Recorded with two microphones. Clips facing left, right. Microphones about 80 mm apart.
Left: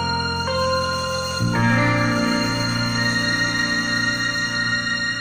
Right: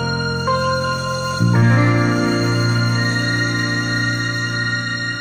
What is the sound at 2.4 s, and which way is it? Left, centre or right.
Music, right.